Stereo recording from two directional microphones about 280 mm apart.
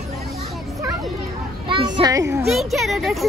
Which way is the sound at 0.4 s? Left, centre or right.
Centre.